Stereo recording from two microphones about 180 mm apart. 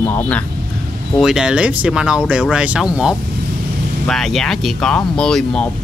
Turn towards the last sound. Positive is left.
turn(degrees=5)  # may be behind; listen again after turning